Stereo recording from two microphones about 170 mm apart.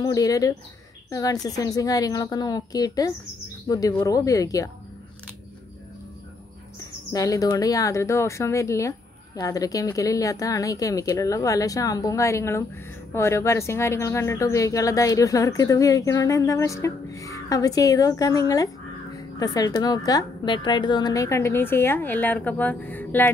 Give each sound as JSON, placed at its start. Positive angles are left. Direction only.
{"t": 0.0, "sound": "speech", "side_deg": 20}
{"t": 7.1, "sound": "a woman's voice", "side_deg": 20}